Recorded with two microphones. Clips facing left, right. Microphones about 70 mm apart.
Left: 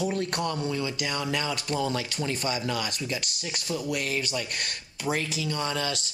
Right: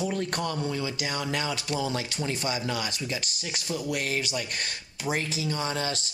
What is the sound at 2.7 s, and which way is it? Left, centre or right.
Speech, left.